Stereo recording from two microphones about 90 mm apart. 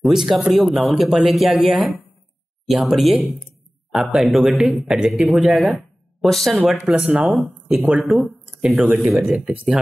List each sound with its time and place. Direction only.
0.0 s speech: 5° right (ahead or behind)
7.0 s speech: 15° right (ahead or behind)
7.3 s speech: centre (ahead or behind)